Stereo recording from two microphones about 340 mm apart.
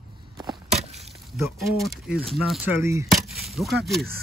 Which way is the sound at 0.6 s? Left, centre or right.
Centre.